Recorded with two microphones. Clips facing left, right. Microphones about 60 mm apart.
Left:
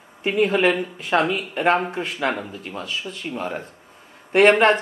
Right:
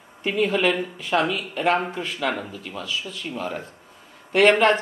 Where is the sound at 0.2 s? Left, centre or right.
Left.